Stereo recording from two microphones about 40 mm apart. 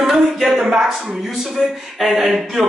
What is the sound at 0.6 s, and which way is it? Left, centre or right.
Speech, right.